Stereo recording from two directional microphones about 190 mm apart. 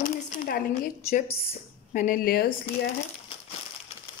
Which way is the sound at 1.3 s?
35° left (ahead or behind).